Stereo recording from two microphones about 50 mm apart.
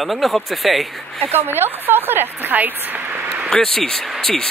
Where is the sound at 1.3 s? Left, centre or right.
Right.